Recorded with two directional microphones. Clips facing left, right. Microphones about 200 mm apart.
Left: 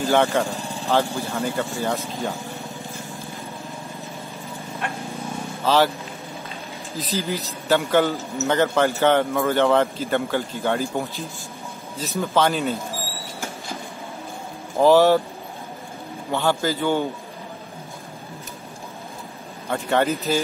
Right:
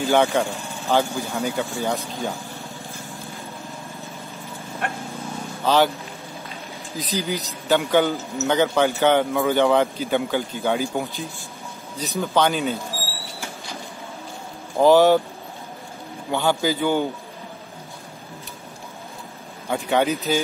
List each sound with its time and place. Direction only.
0.0 s speech: centre (ahead or behind)
0.5 s vehicle: 35° left (ahead or behind)
0.8 s speech: 5° right (ahead or behind)
7.0 s speech: centre (ahead or behind)
14.8 s speech: centre (ahead or behind)
16.3 s speech: centre (ahead or behind)
19.7 s speech: centre (ahead or behind)